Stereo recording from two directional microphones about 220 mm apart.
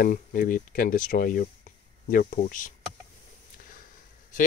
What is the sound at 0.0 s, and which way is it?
Speech, 40° left (ahead or behind).